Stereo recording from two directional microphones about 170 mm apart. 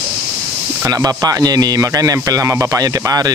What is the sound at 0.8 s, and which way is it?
A man's voice, 20° right (ahead or behind).